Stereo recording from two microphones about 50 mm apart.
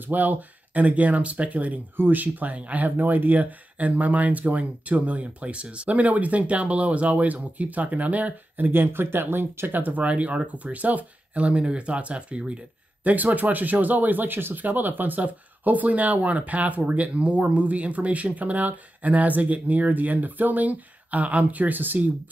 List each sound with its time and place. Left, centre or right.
0.0 s speech: right
10.0 s speech: right